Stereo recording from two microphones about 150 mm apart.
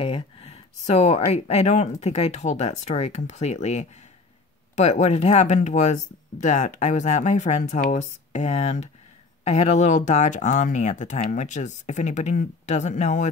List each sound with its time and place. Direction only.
0.0 s speech: 40° left (ahead or behind)